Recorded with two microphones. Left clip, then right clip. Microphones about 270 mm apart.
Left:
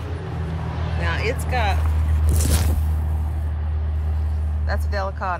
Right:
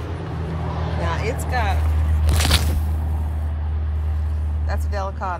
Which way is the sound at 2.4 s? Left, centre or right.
Right.